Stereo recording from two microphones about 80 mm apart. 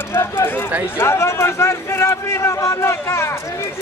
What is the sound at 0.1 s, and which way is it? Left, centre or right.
A man's voice, left.